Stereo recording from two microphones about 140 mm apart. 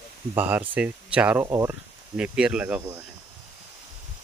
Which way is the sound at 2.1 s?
10° right (ahead or behind).